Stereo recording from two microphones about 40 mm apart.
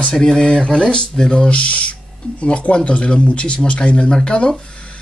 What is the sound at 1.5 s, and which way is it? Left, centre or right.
Speech, left.